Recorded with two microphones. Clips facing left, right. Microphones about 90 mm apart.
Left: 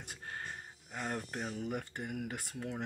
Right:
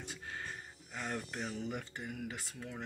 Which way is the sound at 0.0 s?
45° left (ahead or behind).